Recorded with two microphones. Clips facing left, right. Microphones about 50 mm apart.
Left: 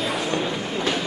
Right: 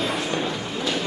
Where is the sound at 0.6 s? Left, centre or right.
Left.